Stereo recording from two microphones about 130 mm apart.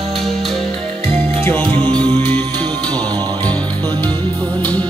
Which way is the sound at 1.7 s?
45° right (ahead or behind).